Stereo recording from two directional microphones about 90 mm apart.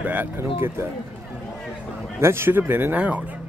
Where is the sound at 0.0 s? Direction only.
20° right (ahead or behind).